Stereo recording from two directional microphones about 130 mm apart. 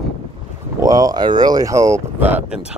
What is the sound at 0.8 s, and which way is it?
Speech, 25° right (ahead or behind).